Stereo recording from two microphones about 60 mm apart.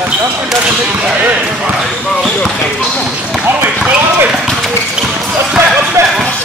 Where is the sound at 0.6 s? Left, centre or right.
Centre.